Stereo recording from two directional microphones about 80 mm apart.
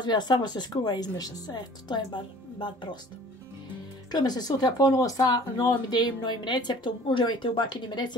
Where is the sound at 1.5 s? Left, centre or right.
Left.